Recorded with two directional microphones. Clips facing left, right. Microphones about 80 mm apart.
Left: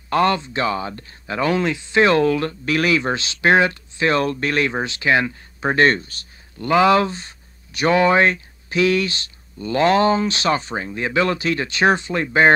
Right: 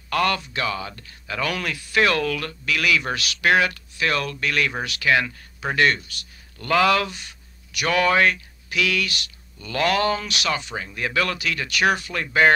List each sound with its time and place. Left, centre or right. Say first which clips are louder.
0.1 s speech: left 5 dB; left
6.6 s speech: left 4 dB; left